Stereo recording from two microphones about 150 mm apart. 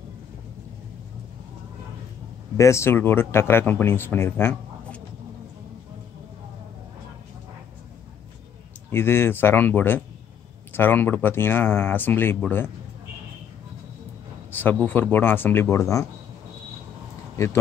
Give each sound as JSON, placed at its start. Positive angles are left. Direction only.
{"t": 2.5, "sound": "speech", "side_deg": 20}
{"t": 8.9, "sound": "speech", "side_deg": 15}
{"t": 14.5, "sound": "speech", "side_deg": 10}
{"t": 17.4, "sound": "speech", "side_deg": 20}